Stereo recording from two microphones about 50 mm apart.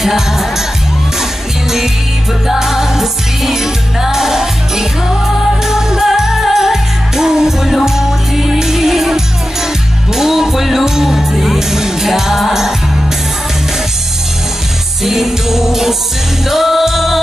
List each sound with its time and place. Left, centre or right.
0.0 s music: centre
2.4 s music: centre
15.0 s music: centre